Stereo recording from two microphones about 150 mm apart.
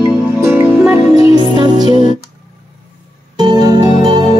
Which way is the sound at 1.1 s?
40° left (ahead or behind).